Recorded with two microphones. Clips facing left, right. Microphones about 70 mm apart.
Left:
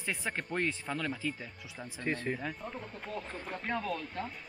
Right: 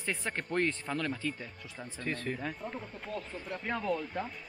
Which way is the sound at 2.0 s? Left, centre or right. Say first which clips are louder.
Left 2 dB; left.